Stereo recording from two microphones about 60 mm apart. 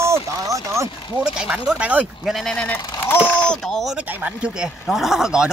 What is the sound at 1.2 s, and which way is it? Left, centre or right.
Speech, centre.